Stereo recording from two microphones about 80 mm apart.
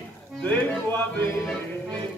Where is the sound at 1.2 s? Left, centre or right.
Left.